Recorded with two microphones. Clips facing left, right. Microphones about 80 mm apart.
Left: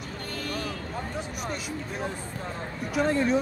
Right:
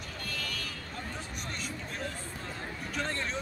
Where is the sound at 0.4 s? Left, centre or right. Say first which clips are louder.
Left 9 dB; left.